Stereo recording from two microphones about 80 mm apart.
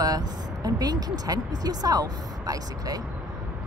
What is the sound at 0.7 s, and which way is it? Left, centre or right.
Speech, right.